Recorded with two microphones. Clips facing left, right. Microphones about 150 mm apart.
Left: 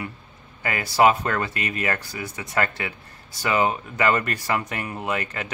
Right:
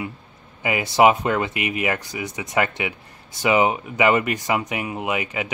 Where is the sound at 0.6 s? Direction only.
15° right (ahead or behind).